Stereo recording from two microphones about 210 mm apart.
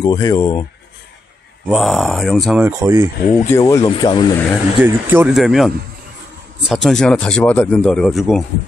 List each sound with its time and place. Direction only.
0.0 s speech: 20° left (ahead or behind)
1.7 s speech: centre (ahead or behind)
2.6 s speech: 10° right (ahead or behind)
3.4 s speech: 15° left (ahead or behind)
4.7 s speech: 10° right (ahead or behind)
6.7 s speech: centre (ahead or behind)